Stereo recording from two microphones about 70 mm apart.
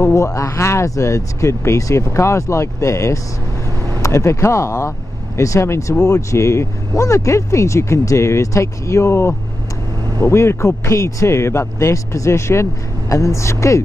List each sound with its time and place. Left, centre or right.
0.0 s speech: left